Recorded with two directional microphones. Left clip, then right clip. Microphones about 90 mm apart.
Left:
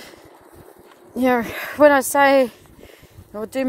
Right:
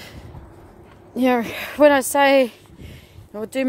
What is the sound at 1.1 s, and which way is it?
Speech, 25° right (ahead or behind).